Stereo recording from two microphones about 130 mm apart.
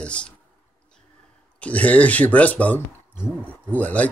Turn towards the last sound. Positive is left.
turn(degrees=10)  # may be behind; listen again after turning